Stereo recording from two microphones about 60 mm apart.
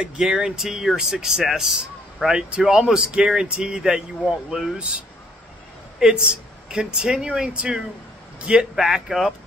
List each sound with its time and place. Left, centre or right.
0.0 s speech: centre